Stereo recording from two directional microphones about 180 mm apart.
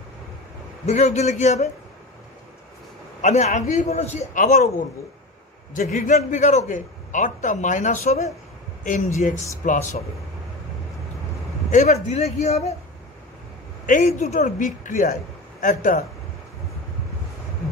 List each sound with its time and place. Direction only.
0.8 s a man's voice: 40° left (ahead or behind)
3.2 s a man's voice: 40° left (ahead or behind)
5.8 s a man's voice: 50° left (ahead or behind)
6.1 s a man's voice: 40° left (ahead or behind)
11.7 s a man's voice: 40° left (ahead or behind)
13.8 s a man's voice: 45° left (ahead or behind)